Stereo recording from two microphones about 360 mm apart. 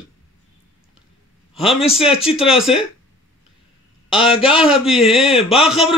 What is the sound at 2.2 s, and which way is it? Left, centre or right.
Speech, centre.